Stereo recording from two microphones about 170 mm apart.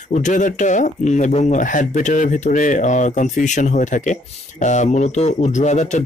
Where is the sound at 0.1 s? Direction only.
45° left (ahead or behind).